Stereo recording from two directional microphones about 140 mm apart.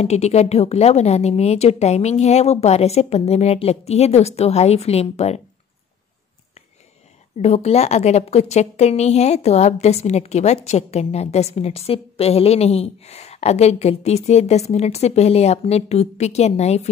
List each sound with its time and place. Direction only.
0.0 s a woman's voice: 50° left (ahead or behind)
7.3 s a woman's voice: 50° left (ahead or behind)